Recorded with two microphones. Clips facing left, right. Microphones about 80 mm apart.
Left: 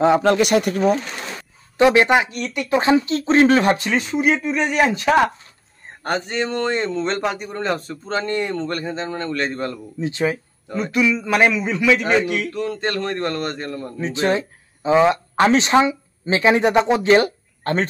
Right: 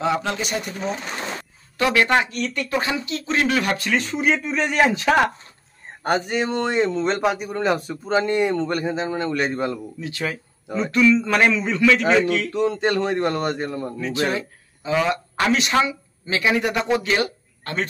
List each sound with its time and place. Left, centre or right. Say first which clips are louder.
0.0 s speech: left 8 dB; left
0.4 s speech: left 10 dB; left
1.8 s speech: left 4 dB; left
2.3 s speech: even; centre
2.7 s speech: left 11 dB; left
4.0 s speech: left 3 dB; centre
6.0 s a man's voice: right 1 dB; centre
9.9 s speech: left 6 dB; left
10.8 s speech: right 2 dB; centre
12.5 s a man's voice: right 3 dB; centre
13.9 s speech: left 5 dB; left
17.1 s a sound: left 7 dB; left